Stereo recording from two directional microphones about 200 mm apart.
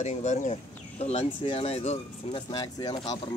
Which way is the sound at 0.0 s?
35° left (ahead or behind).